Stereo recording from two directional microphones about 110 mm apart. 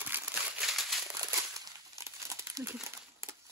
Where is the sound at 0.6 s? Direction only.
Centre (ahead or behind).